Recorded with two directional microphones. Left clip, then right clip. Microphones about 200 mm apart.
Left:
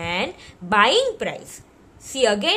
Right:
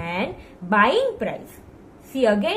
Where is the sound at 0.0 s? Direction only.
60° left (ahead or behind).